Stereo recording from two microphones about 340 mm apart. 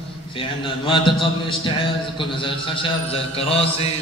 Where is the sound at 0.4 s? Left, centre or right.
Centre.